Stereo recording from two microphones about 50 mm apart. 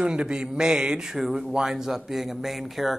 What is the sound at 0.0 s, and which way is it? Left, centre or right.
A man's voice, centre.